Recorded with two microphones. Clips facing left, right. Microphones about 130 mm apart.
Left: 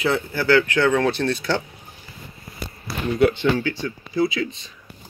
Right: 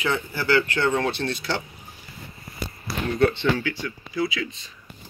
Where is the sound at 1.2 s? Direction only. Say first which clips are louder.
Left 5 dB; 50° left (ahead or behind).